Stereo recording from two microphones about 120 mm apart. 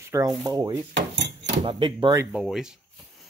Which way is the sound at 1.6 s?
45° right (ahead or behind).